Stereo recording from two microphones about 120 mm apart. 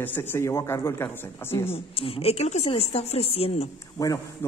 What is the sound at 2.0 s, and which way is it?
A woman's voice, 55° left (ahead or behind).